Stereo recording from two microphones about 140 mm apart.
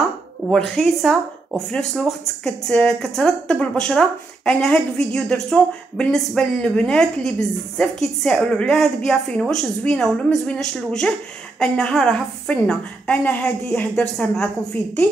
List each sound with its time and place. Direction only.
0.5 s a woman's voice: 5° left (ahead or behind)